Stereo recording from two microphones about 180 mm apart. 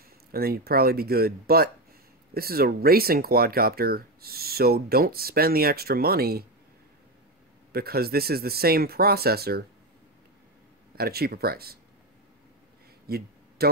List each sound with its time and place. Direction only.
0.3 s speech: 60° right (ahead or behind)
7.7 s speech: 60° right (ahead or behind)
11.0 s speech: 60° right (ahead or behind)
13.0 s a sound: 60° right (ahead or behind)